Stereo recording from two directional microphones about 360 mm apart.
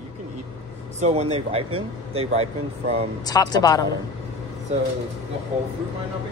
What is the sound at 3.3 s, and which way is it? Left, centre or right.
Speech, centre.